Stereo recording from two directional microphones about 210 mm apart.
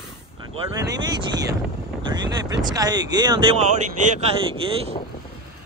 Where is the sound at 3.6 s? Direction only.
35° right (ahead or behind).